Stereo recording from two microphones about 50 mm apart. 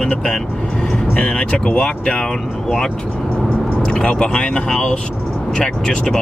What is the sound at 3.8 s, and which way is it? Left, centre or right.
Speech, left.